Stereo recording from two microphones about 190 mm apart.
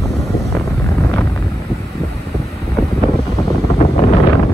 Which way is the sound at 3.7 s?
35° left (ahead or behind).